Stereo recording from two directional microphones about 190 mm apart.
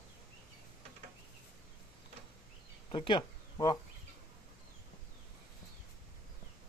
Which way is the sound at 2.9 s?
25° left (ahead or behind).